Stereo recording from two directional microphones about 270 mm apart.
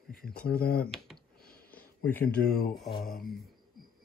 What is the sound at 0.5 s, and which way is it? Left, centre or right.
Speech, left.